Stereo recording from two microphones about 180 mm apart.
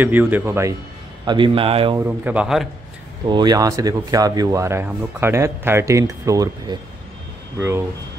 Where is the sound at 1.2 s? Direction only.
25° right (ahead or behind).